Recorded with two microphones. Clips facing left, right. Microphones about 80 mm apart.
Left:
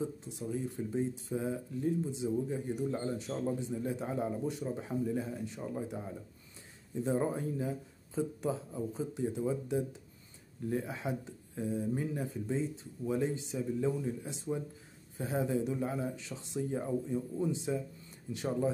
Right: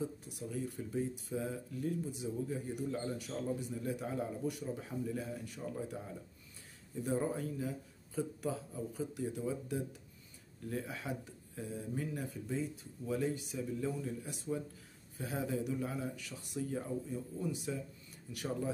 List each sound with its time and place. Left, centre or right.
0.0 s speech: left